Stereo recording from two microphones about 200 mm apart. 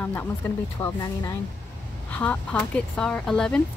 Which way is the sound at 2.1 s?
5° left (ahead or behind).